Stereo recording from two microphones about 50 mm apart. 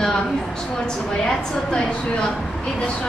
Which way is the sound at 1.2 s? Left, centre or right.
Centre.